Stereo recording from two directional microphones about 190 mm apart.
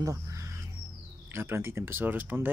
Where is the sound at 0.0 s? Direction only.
15° right (ahead or behind).